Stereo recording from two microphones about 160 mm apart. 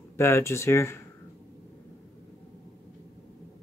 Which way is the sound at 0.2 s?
15° left (ahead or behind).